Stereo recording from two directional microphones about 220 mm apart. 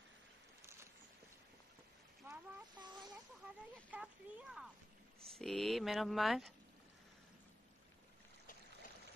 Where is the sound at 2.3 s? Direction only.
15° right (ahead or behind).